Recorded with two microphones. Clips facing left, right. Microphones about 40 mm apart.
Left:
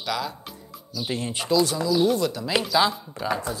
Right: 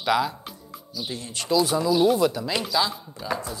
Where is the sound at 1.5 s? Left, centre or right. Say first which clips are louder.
Right 1 dB; centre.